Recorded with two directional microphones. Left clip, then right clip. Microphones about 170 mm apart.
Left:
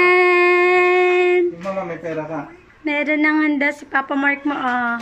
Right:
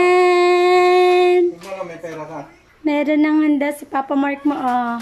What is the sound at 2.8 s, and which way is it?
A woman's voice, 25° right (ahead or behind).